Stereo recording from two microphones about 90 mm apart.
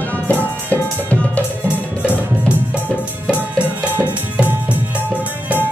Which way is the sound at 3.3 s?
15° right (ahead or behind).